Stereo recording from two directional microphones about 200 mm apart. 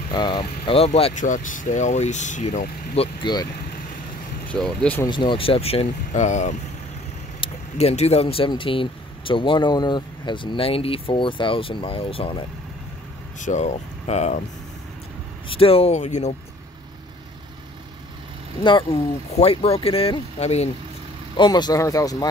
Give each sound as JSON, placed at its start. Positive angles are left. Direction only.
{"t": 0.1, "sound": "speech", "side_deg": 20}
{"t": 4.5, "sound": "speech", "side_deg": 5}
{"t": 5.0, "sound": "speech", "side_deg": 25}
{"t": 15.4, "sound": "speech", "side_deg": 25}
{"t": 18.6, "sound": "speech", "side_deg": 25}
{"t": 21.4, "sound": "speech", "side_deg": 20}